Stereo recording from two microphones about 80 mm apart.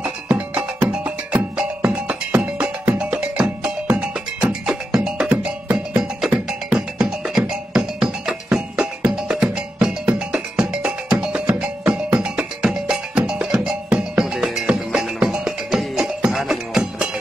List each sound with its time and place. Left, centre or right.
0.9 s music: centre